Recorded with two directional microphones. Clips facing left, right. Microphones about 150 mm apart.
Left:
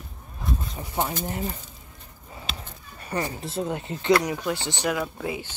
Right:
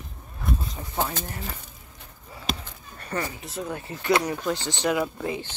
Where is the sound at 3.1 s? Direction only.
15° left (ahead or behind).